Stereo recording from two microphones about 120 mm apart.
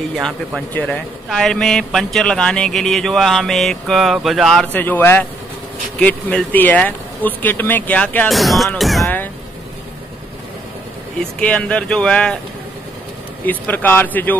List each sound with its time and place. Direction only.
0.2 s speech: centre (ahead or behind)
4.7 s speech: 15° left (ahead or behind)
8.3 s speech: centre (ahead or behind)
11.3 s speech: 10° left (ahead or behind)
13.5 s speech: 15° left (ahead or behind)